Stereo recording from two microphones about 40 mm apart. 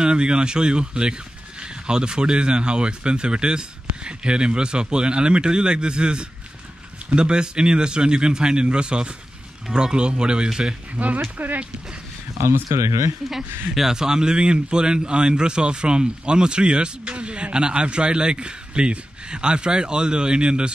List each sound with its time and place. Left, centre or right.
0.0 s a man's voice: right
11.3 s speech: right
13.3 s a man's voice: centre; by 20.7 s right